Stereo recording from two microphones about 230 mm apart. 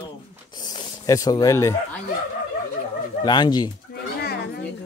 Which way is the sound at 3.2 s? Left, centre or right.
Centre.